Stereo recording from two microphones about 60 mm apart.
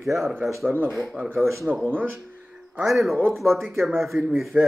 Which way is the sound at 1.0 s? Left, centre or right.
Centre.